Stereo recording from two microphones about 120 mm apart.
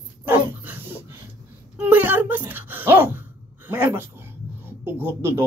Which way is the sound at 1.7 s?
15° right (ahead or behind).